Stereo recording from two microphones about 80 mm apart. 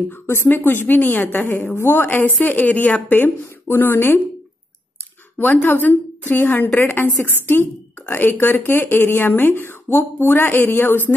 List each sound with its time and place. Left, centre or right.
0.1 s a woman's voice: left
5.4 s a woman's voice: left